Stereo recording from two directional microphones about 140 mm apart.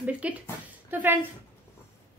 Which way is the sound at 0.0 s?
10° right (ahead or behind).